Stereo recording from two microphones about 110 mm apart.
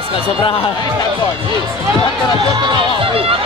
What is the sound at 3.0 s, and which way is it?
Chatter, 60° right (ahead or behind).